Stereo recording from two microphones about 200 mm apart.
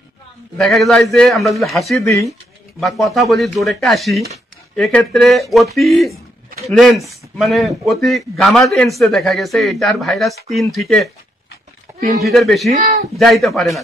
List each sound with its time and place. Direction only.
0.6 s a man's voice: centre (ahead or behind)
7.3 s a man's voice: centre (ahead or behind)
12.2 s a man's voice: centre (ahead or behind)
12.7 s speech: 35° right (ahead or behind)
13.2 s a man's voice: centre (ahead or behind)